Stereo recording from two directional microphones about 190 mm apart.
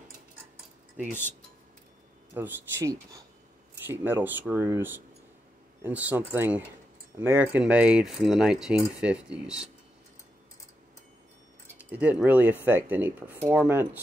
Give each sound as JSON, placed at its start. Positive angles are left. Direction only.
{"t": 2.3, "sound": "speech", "side_deg": -15}
{"t": 11.6, "sound": "speech", "side_deg": -10}